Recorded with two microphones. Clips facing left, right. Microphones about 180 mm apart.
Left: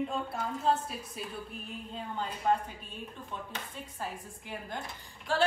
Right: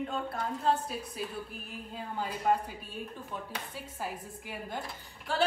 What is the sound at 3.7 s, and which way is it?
A woman's voice, 5° right (ahead or behind).